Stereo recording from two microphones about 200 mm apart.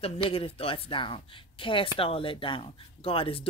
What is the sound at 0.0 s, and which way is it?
Speech, 30° left (ahead or behind).